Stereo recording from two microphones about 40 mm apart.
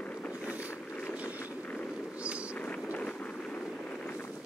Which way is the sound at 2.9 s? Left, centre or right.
Left.